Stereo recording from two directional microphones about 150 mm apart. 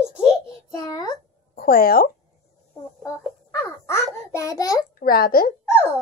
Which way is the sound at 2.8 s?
20° left (ahead or behind).